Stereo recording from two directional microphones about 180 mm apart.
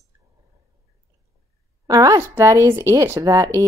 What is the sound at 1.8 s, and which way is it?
Speech, 20° right (ahead or behind).